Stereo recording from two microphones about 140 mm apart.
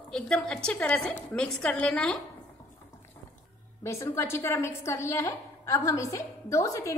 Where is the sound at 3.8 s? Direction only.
20° left (ahead or behind).